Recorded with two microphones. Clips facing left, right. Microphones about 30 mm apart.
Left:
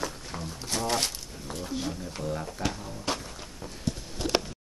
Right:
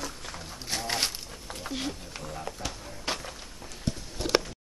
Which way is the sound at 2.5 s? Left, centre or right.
Centre.